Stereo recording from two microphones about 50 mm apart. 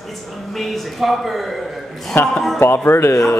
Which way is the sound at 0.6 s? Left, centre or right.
Centre.